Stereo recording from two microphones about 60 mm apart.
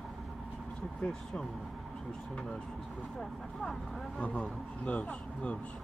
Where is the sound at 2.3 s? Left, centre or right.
Centre.